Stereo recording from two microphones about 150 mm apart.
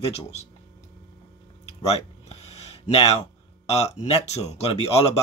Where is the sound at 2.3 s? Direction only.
45° left (ahead or behind).